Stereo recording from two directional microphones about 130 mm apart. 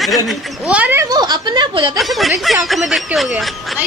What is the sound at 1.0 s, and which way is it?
Speech, 30° right (ahead or behind).